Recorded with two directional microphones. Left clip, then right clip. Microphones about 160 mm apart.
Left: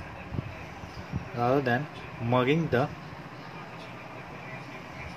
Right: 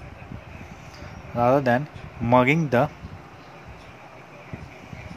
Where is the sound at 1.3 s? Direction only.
80° right.